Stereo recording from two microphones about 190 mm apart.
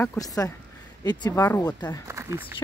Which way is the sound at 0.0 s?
15° left (ahead or behind).